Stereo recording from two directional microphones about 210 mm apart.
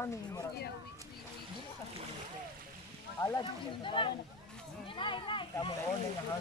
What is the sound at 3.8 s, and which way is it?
Speech, 25° left (ahead or behind).